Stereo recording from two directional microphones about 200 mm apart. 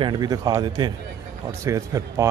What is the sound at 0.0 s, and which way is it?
A man's voice, 20° right (ahead or behind).